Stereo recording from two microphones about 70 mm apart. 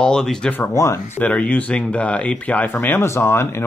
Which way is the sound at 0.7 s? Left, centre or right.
Left.